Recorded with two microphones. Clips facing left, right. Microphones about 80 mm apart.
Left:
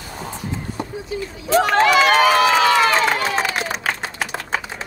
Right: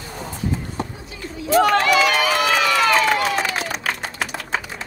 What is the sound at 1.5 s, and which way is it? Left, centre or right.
Run, left.